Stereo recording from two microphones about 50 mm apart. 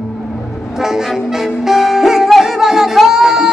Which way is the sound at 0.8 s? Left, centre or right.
Centre.